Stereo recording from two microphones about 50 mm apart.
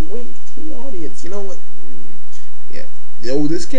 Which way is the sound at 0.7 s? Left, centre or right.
Left.